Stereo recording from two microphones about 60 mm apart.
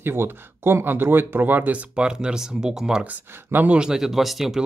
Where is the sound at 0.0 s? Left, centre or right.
Right.